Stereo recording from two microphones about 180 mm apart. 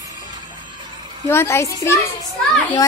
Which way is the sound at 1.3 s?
15° left (ahead or behind).